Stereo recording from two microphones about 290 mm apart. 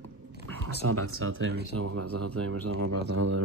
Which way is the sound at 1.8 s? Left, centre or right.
Right.